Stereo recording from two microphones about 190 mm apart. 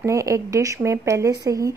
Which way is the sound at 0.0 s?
15° right (ahead or behind).